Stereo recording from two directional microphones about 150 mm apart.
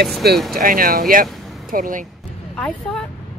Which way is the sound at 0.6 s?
70° right (ahead or behind).